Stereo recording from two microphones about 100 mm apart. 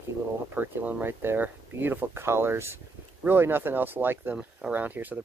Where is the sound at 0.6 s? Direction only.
15° right (ahead or behind).